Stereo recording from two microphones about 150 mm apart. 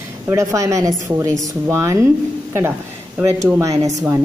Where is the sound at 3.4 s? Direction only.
20° right (ahead or behind).